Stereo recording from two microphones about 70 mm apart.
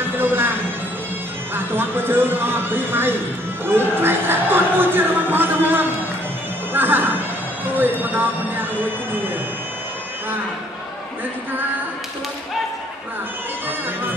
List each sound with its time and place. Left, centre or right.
0.0 s music: right
1.5 s speech: right
6.7 s music: right
7.6 s speech: right